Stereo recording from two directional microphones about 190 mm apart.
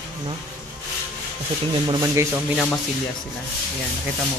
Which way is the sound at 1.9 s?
15° right (ahead or behind).